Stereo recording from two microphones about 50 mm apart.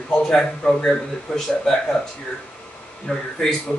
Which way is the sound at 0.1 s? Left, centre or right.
Centre.